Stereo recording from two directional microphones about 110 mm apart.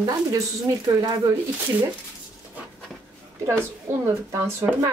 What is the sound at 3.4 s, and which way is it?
Speech, 25° right (ahead or behind).